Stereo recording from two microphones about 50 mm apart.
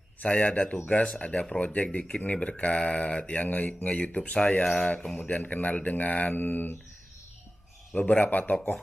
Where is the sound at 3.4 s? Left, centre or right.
Left.